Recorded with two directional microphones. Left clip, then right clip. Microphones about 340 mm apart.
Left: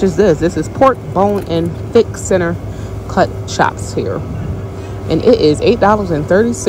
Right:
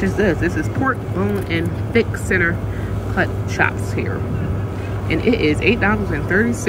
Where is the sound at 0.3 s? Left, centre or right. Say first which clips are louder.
Left 6 dB; centre.